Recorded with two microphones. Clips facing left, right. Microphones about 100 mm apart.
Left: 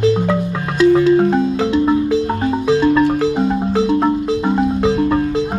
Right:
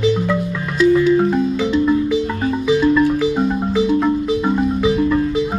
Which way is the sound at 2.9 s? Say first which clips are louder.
Left 1 dB; 80° left.